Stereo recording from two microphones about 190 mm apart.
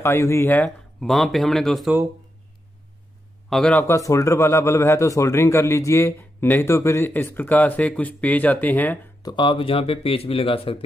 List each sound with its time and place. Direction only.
0.0 s speech: 15° left (ahead or behind)
3.4 s a man's voice: 5° left (ahead or behind)
9.2 s speech: 25° left (ahead or behind)